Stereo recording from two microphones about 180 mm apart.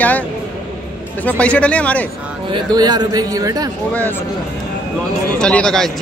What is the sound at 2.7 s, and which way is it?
Speech, 25° right (ahead or behind).